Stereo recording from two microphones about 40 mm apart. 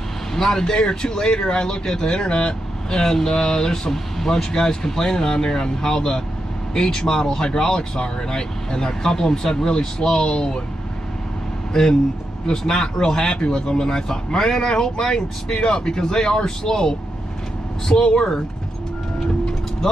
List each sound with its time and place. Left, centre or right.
0.3 s speech: centre
11.7 s speech: centre
19.2 s vehicle: centre